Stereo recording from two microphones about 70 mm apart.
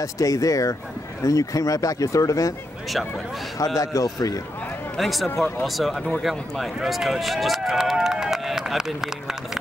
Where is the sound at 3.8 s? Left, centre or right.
Left.